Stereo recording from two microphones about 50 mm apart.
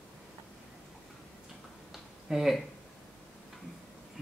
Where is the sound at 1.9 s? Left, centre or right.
Centre.